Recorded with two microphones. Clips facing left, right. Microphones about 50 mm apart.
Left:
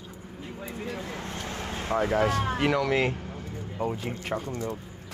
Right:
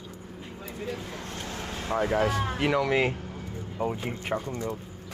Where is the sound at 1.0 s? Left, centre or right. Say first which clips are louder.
Left 2 dB; left.